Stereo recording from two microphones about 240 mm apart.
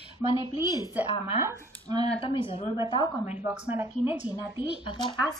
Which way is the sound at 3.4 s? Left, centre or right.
Centre.